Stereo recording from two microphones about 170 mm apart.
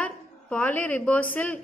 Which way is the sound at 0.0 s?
10° left (ahead or behind).